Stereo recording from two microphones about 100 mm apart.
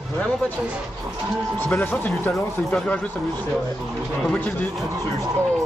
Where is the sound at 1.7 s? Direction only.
20° left (ahead or behind).